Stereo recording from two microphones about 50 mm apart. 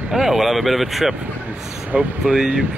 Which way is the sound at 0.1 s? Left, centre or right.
Centre.